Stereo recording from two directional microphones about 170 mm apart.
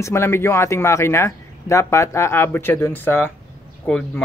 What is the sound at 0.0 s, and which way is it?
Speech, 15° left (ahead or behind).